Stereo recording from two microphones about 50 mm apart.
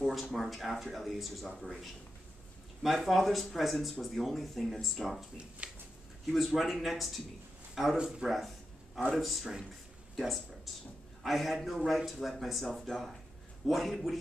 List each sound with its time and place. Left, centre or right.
0.1 s speech: centre
5.6 s speech: right
6.2 s speech: centre
8.0 s speech: centre
9.1 s speech: centre